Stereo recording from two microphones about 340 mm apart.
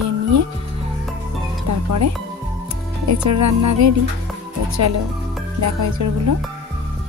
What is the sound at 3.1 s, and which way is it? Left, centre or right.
Speech, right.